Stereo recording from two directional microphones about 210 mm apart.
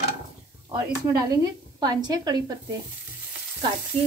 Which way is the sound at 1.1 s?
15° right (ahead or behind).